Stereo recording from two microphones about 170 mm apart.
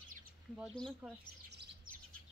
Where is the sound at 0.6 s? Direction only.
Centre (ahead or behind).